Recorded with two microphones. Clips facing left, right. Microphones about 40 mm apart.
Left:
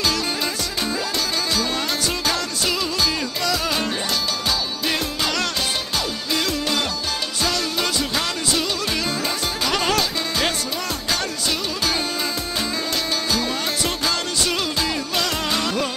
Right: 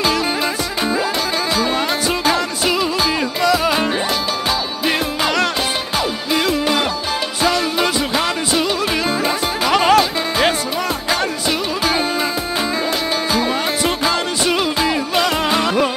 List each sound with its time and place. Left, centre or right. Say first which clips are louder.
1.5 s music: right 5 dB; centre
9.2 s music: right 6 dB; centre
13.3 s music: right 6 dB; centre